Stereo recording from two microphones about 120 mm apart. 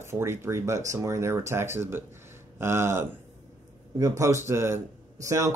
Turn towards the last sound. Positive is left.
turn(degrees=-25)  # may be behind; listen again after turning